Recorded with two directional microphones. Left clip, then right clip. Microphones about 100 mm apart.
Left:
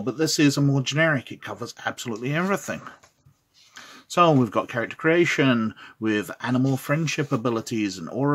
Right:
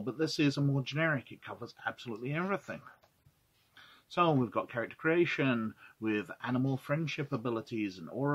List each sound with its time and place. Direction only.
0.0 s speech: 10° left (ahead or behind)
4.1 s speech: 20° left (ahead or behind)